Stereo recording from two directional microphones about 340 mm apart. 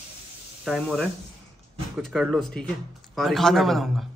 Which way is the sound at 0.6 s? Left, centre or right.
Centre.